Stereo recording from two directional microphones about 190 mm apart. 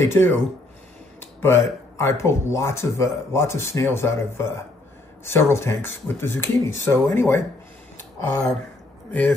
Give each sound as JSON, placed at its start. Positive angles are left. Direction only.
{"t": 0.0, "sound": "speech", "side_deg": 10}